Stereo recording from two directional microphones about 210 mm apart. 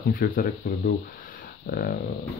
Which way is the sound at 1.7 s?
45° left (ahead or behind).